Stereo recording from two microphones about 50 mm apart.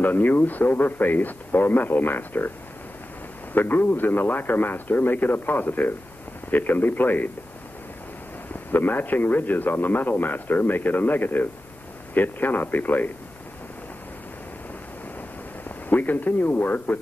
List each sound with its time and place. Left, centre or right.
0.0 s a man's voice: left
3.5 s a man's voice: left
8.7 s a man's voice: left
15.9 s a man's voice: left